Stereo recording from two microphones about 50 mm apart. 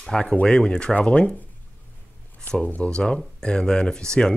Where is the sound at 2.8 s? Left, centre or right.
Centre.